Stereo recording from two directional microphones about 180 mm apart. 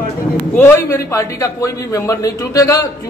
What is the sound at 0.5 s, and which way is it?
A man's voice, 10° left (ahead or behind).